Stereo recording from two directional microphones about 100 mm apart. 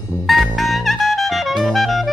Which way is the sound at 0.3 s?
Centre (ahead or behind).